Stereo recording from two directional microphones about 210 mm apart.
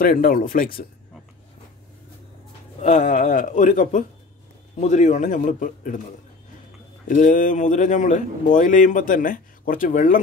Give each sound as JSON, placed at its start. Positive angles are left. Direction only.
{"t": 0.0, "sound": "speech", "side_deg": 40}
{"t": 2.8, "sound": "speech", "side_deg": 35}
{"t": 7.1, "sound": "speech", "side_deg": 40}